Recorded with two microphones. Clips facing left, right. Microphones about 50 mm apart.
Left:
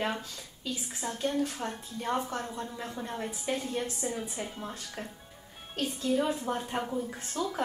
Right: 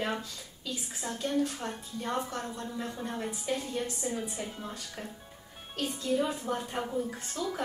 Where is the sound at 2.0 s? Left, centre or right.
Centre.